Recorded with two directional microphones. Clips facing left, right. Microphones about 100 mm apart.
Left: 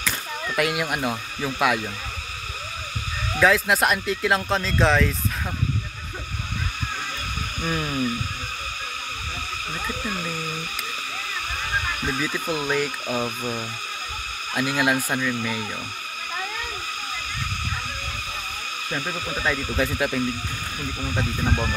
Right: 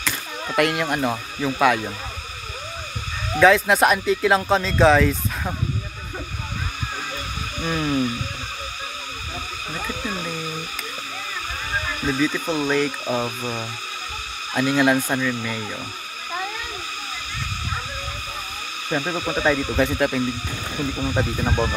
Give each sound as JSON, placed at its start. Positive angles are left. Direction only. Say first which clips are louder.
{"t": 0.6, "sound": "speech", "louder": "right 4 dB", "side_deg": 5}
{"t": 3.3, "sound": "speech", "louder": "right 4 dB", "side_deg": 0}
{"t": 7.6, "sound": "speech", "louder": "right 4 dB", "side_deg": -5}
{"t": 10.0, "sound": "speech", "louder": "right 2 dB", "side_deg": -10}
{"t": 12.1, "sound": "speech", "louder": "right 6 dB", "side_deg": 5}
{"t": 13.0, "sound": "speech", "louder": "right 2 dB", "side_deg": -15}
{"t": 14.5, "sound": "speech", "louder": "right 4 dB", "side_deg": 5}
{"t": 18.9, "sound": "speech", "louder": "right 6 dB", "side_deg": -25}
{"t": 20.0, "sound": "speech", "louder": "right 3 dB", "side_deg": -5}
{"t": 21.0, "sound": "speech", "louder": "right 2 dB", "side_deg": -20}